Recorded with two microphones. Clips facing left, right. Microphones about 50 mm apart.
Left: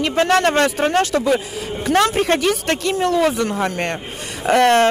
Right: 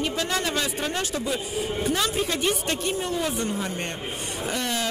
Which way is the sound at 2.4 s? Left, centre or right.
Left.